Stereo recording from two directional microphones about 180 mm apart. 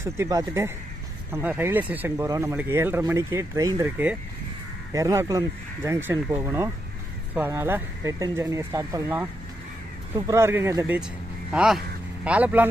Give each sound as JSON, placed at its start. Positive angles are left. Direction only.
{"t": 0.0, "sound": "speech", "side_deg": -15}
{"t": 11.5, "sound": "speech", "side_deg": -5}